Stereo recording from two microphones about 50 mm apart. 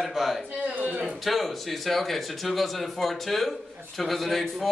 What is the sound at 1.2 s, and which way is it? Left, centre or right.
A man's voice, centre.